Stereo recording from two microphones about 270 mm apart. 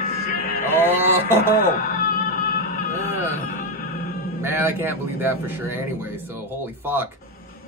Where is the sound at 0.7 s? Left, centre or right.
Centre.